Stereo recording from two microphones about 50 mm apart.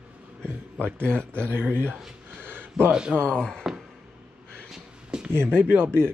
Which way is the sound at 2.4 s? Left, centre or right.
Right.